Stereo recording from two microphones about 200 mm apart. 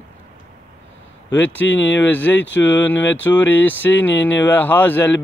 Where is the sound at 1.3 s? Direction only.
10° left (ahead or behind).